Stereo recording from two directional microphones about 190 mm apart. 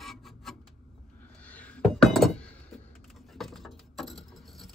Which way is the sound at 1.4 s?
10° left (ahead or behind).